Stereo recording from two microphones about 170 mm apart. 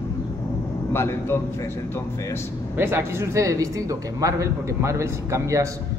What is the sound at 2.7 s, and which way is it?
Speech, 15° right (ahead or behind).